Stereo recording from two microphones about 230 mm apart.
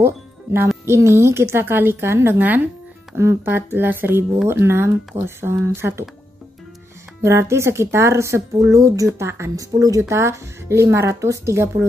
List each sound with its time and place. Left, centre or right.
0.0 s music: centre
0.8 s speech: centre
7.2 s speech: centre